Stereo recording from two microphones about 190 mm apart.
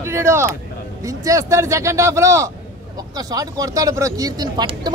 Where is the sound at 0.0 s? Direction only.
15° right (ahead or behind).